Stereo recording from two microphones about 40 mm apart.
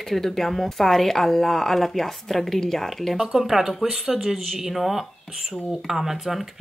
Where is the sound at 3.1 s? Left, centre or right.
Centre.